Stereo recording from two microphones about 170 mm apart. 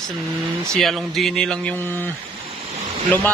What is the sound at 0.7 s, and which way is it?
Speech, centre (ahead or behind).